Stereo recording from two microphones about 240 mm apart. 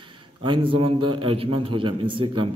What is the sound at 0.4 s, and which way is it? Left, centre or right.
A man's voice, right.